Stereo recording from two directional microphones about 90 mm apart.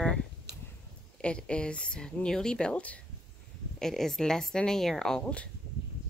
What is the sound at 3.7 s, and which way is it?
A woman's voice, 5° left (ahead or behind).